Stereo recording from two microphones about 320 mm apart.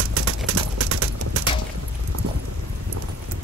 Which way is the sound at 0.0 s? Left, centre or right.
Right.